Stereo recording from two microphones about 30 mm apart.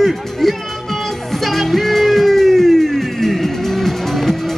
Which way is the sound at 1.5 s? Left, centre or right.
Centre.